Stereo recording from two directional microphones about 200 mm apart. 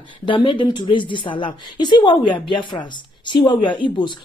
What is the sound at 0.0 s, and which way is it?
A woman's voice, 25° left (ahead or behind).